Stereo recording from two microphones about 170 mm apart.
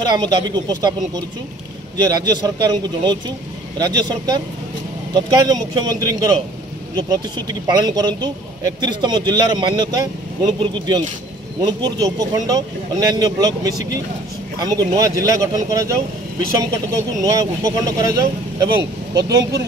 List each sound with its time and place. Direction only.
0.0 s speech: 25° right (ahead or behind)
2.0 s speech: 20° right (ahead or behind)
16.9 s speech: 20° right (ahead or behind)